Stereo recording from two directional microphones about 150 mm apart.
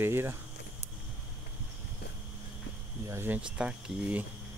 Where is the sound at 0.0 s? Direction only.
15° right (ahead or behind).